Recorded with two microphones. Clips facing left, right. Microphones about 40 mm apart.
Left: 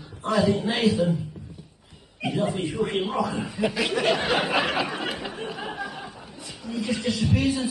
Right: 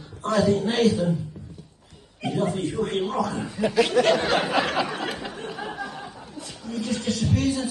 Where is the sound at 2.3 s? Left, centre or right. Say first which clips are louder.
Right 1 dB; centre.